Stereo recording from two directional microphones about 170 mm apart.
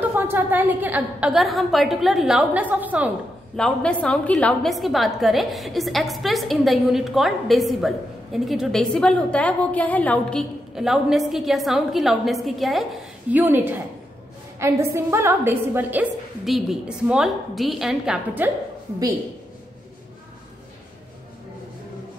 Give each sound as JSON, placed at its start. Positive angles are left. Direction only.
{"t": 0.0, "sound": "a woman's voice", "side_deg": -10}
{"t": 3.5, "sound": "a woman's voice", "side_deg": 5}